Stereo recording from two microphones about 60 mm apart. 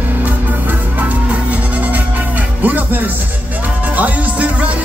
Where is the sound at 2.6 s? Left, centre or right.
Right.